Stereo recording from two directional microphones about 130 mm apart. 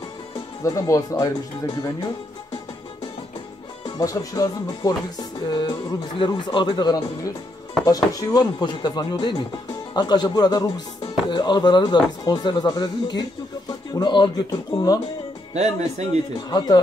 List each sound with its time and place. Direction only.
0.7 s speech: 25° left (ahead or behind)
4.0 s speech: 25° left (ahead or behind)
15.5 s speech: 60° right (ahead or behind)
16.4 s speech: 30° left (ahead or behind)